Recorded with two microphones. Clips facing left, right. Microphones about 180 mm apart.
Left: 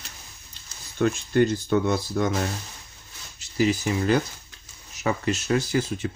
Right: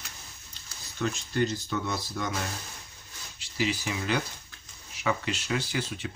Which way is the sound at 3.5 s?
45° left (ahead or behind).